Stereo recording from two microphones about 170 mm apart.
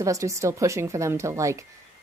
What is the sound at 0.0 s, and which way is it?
Speech, 20° right (ahead or behind).